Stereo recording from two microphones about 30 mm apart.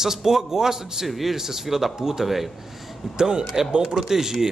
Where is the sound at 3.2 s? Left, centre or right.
Right.